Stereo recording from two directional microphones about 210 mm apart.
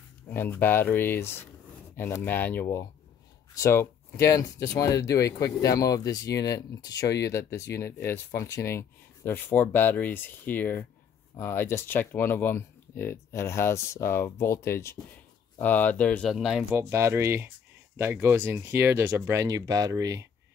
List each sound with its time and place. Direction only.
0.3 s speech: 10° left (ahead or behind)
16.9 s speech: 15° right (ahead or behind)